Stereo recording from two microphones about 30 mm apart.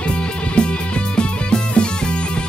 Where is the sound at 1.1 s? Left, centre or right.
Left.